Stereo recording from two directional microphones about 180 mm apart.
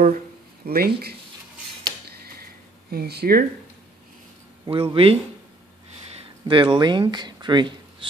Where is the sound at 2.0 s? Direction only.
55° right (ahead or behind).